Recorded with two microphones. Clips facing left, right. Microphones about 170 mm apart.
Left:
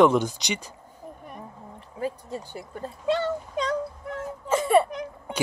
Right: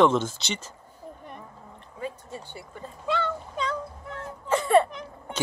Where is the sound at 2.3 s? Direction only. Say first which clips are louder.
Left 5 dB; 40° left (ahead or behind).